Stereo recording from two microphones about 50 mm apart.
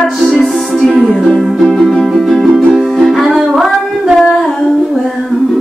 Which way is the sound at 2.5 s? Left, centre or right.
Right.